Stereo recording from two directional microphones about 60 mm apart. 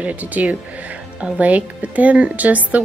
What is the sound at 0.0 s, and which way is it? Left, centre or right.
Speech, right.